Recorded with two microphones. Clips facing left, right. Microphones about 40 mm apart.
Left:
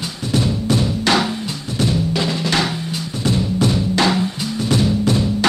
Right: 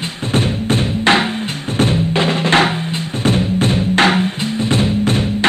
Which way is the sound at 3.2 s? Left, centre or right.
Right.